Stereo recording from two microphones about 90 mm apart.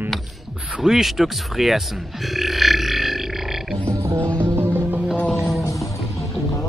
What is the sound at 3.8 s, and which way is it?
Music, 30° right (ahead or behind).